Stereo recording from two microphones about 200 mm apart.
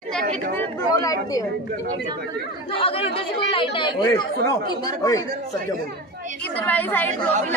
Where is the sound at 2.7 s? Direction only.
30° left (ahead or behind).